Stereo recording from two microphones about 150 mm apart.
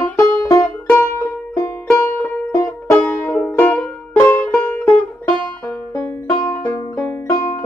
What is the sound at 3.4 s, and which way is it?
Music, 5° left (ahead or behind).